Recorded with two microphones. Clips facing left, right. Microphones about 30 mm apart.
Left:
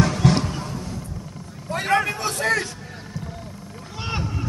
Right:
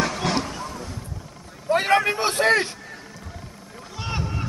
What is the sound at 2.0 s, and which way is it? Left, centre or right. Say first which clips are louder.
Speech: right 3 dB; right.